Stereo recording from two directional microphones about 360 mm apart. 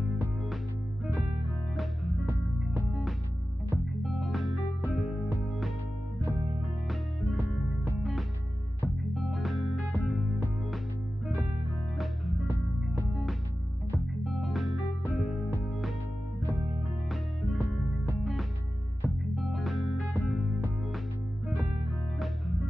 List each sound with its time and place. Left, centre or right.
1.8 s music: centre
6.6 s music: centre
12.0 s music: centre
17.1 s music: centre